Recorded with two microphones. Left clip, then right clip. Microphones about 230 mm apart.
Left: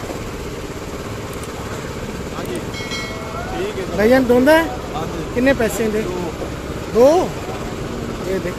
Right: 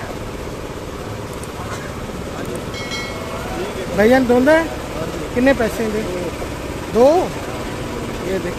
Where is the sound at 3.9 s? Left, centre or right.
Centre.